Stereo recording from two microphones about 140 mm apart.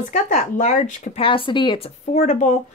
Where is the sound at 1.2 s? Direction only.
40° left (ahead or behind).